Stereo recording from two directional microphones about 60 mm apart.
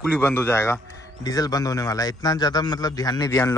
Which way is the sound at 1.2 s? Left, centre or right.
Left.